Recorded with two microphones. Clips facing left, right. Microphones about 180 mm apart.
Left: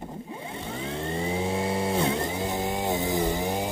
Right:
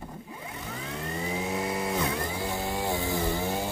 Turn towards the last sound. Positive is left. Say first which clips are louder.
# left 2 dB
turn(degrees=15)  # may be behind; listen again after turning